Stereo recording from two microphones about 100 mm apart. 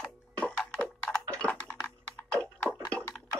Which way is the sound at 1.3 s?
15° left (ahead or behind).